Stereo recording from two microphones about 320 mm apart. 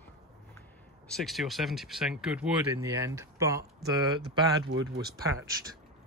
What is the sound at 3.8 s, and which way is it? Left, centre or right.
Speech, right.